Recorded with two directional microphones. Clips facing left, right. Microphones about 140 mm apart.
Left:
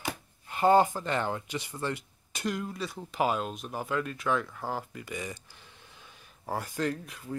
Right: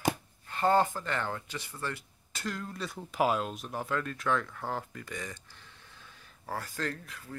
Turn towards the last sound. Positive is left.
turn(degrees=20)  # may be behind; listen again after turning